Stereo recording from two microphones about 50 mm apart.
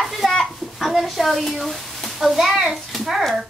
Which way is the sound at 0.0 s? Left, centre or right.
Centre.